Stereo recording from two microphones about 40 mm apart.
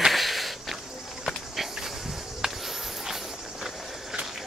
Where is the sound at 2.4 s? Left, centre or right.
Centre.